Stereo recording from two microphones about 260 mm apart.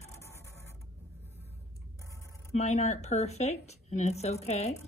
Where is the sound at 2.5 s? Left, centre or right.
Left.